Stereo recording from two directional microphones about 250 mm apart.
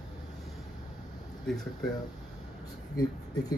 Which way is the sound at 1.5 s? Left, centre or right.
Centre.